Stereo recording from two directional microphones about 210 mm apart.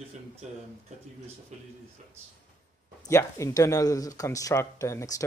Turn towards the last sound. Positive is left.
turn(degrees=15)  # may be behind; listen again after turning